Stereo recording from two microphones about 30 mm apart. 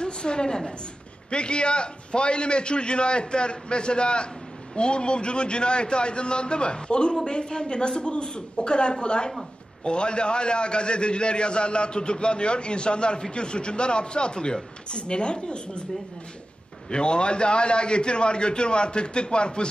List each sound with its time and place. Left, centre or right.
0.0 s a sound: left
1.3 s a man's voice: left
16.9 s a man's voice: left